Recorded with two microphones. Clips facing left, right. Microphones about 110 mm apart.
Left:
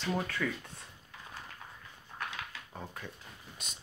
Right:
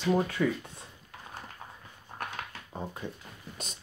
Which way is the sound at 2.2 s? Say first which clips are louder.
Right 2 dB; 50° right (ahead or behind).